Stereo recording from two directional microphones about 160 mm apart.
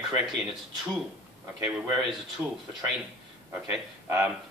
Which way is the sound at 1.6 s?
5° right (ahead or behind).